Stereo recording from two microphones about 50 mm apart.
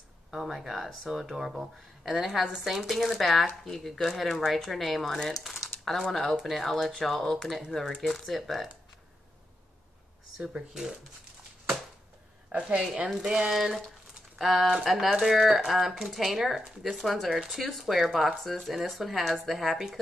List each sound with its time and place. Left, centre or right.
0.3 s speech: centre
10.3 s speech: centre
12.4 s a woman's voice: right
13.5 s speech: centre